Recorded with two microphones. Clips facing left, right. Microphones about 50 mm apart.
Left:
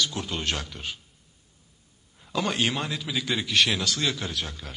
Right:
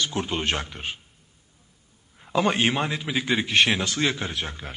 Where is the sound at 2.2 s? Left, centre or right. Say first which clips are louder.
Right 4 dB; right.